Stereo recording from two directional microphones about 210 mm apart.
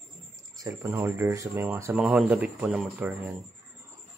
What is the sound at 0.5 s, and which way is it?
A man's voice, 15° right (ahead or behind).